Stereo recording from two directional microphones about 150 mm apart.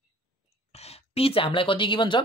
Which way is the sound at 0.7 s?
40° left (ahead or behind).